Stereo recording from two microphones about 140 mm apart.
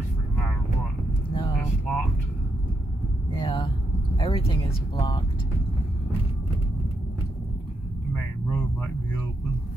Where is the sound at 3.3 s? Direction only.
35° left (ahead or behind).